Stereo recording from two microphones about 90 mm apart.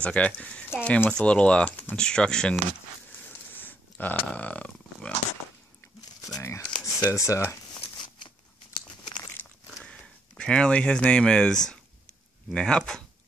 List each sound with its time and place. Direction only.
0.0 s speech: 15° left (ahead or behind)
3.1 s a sound: 20° left (ahead or behind)
4.3 s speech: 15° left (ahead or behind)
6.3 s speech: 35° left (ahead or behind)
8.7 s crunch: 60° left (ahead or behind)
9.8 s speech: 10° left (ahead or behind)